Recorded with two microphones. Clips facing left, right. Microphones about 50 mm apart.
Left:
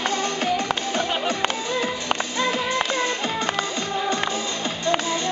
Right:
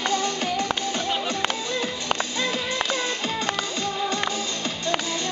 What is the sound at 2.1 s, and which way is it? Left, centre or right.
Music, centre.